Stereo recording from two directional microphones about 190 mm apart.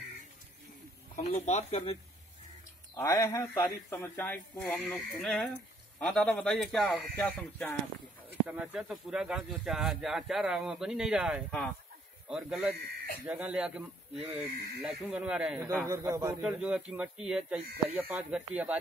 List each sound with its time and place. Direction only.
1.1 s speech: 40° left (ahead or behind)
2.9 s a man's voice: 15° left (ahead or behind)
8.5 s speech: 5° right (ahead or behind)
15.8 s a man's voice: 15° right (ahead or behind)